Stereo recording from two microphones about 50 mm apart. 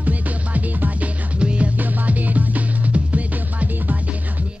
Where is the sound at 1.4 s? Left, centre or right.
Right.